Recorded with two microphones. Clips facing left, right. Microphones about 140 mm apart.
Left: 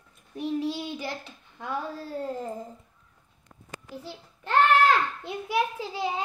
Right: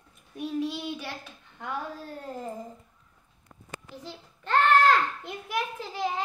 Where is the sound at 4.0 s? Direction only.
10° left (ahead or behind).